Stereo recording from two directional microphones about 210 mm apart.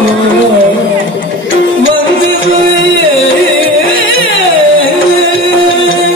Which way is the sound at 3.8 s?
65° left (ahead or behind).